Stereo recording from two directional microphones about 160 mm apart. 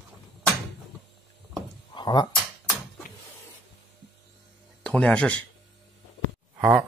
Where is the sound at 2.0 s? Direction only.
25° left (ahead or behind).